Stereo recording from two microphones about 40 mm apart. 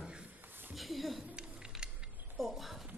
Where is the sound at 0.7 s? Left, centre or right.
Centre.